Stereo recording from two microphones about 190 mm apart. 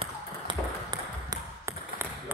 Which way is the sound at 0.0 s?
25° right (ahead or behind).